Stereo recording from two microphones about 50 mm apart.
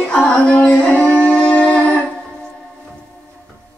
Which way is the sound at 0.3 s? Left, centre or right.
Left.